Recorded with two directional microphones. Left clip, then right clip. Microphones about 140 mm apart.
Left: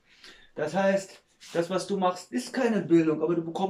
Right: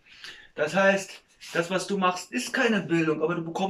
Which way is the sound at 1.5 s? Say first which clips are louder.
Right 1 dB; 40° left (ahead or behind).